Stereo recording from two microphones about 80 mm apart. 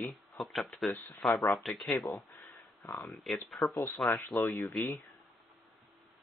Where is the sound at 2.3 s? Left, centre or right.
Left.